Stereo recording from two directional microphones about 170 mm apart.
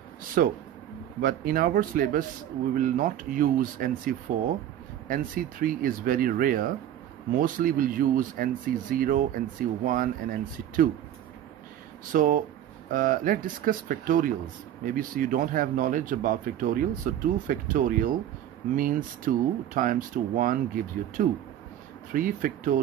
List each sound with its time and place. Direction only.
0.4 s speech: 55° right (ahead or behind)
12.1 s speech: 55° right (ahead or behind)